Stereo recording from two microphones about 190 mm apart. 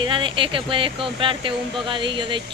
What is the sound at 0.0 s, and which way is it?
Speech, 25° right (ahead or behind).